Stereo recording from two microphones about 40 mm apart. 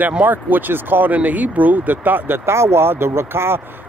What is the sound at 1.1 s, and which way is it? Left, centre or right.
Speech, right.